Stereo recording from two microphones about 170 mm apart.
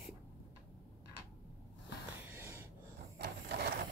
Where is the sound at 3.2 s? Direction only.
70° right (ahead or behind).